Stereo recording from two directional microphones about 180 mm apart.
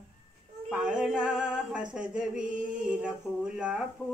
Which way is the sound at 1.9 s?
5° right (ahead or behind).